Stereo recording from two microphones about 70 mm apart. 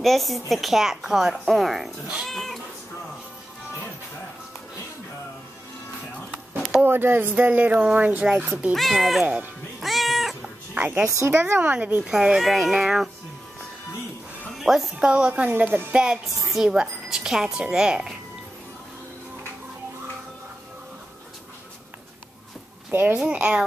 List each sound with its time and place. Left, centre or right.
0.0 s a woman's voice: centre
6.8 s speech: right
8.7 s a woman's voice: centre
9.2 s speech: right
9.8 s cat: centre
11.1 s a woman's voice: right
11.4 s speech: right
12.0 s speech: centre
14.6 s a woman's voice: centre
15.0 s speech: centre
16.4 s speech: centre
22.8 s a child's voice: right
23.1 s speech: centre